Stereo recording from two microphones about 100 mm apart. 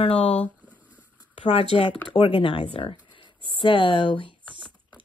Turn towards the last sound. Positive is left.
turn(degrees=60)  # may be behind; listen again after turning